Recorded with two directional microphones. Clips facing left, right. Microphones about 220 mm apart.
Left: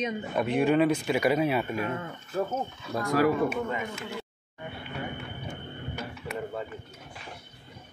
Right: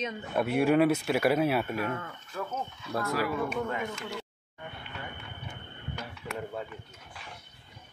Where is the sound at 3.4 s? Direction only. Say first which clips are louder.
Left 3 dB; 5° left (ahead or behind).